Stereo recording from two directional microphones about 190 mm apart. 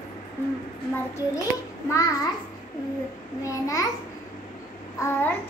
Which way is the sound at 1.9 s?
15° left (ahead or behind).